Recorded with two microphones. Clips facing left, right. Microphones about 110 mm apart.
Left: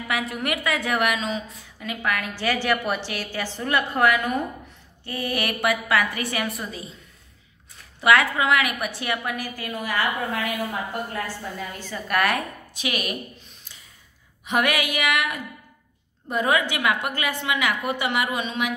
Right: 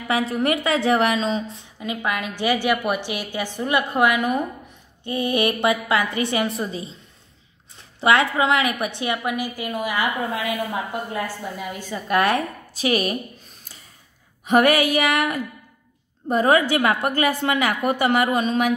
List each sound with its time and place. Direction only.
0.1 s a woman's voice: 30° right (ahead or behind)
14.4 s a woman's voice: 40° right (ahead or behind)